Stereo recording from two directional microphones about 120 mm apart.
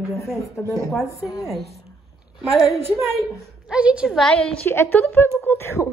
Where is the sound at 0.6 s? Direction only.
Centre (ahead or behind).